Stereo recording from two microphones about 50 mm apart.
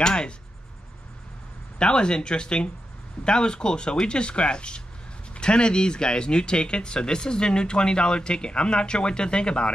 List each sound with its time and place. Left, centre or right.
0.0 s speech: centre
1.8 s speech: centre